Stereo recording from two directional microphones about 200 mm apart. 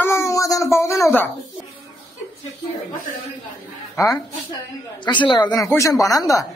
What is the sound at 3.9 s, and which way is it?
Speech, 15° left (ahead or behind).